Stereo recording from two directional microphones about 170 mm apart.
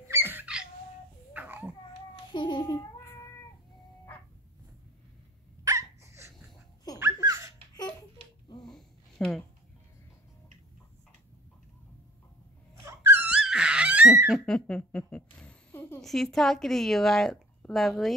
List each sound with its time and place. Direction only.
0.1 s wail: 10° right (ahead or behind)
1.3 s babbling: 10° right (ahead or behind)
2.3 s a sound: 30° left (ahead or behind)
5.6 s dog: 20° right (ahead or behind)
7.0 s laughter: 20° right (ahead or behind)
8.6 s a sound: centre (ahead or behind)
12.8 s dog: 15° right (ahead or behind)
14.3 s speech: 5° left (ahead or behind)